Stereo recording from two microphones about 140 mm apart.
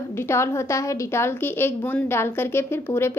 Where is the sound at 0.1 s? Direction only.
20° left (ahead or behind).